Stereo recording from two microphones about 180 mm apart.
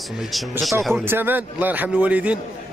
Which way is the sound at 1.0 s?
10° right (ahead or behind).